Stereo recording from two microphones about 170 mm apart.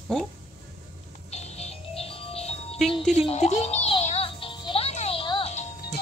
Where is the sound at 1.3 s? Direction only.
40° left (ahead or behind).